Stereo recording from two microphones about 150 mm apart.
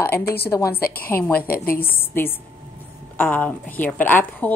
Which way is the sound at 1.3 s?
80° left.